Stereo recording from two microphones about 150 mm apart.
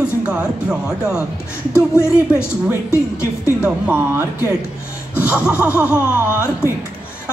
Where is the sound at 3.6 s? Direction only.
10° right (ahead or behind).